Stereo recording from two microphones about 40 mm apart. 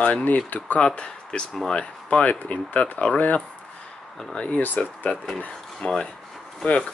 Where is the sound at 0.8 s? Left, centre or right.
Left.